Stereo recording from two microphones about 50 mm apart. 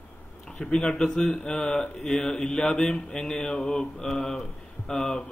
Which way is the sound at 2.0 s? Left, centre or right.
Centre.